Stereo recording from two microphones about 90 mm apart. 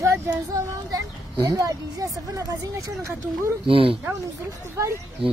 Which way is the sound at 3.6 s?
90° right.